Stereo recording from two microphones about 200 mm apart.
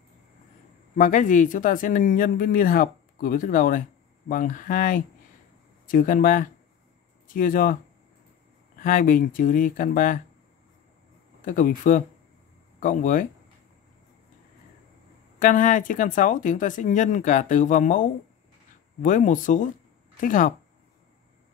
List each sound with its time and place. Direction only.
0.9 s speech: 40° left (ahead or behind)
8.7 s speech: 45° left (ahead or behind)
11.4 s speech: 40° left (ahead or behind)
15.3 s speech: 40° left (ahead or behind)